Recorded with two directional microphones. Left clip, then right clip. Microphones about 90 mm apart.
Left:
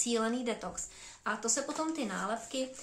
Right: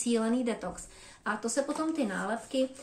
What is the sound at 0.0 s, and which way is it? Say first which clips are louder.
Speech: right 3 dB; 30° left (ahead or behind).